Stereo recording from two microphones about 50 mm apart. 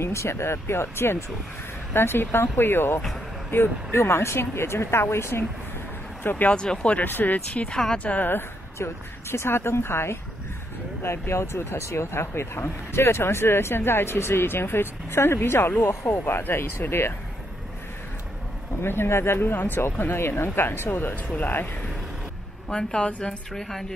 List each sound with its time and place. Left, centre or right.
0.0 s speech: left
6.2 s speech: left
6.5 s speech: centre
7.1 s speech: left
7.7 s a woman's voice: centre
8.0 s speech: left
8.7 s speech: left
18.8 s speech: left
22.7 s speech: centre
23.5 s speech: centre